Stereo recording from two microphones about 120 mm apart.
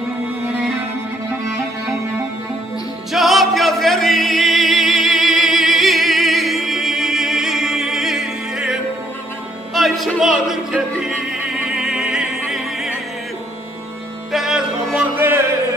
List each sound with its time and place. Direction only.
3.1 s music: centre (ahead or behind)
9.8 s music: centre (ahead or behind)
14.3 s music: 5° right (ahead or behind)
15.1 s music: 20° right (ahead or behind)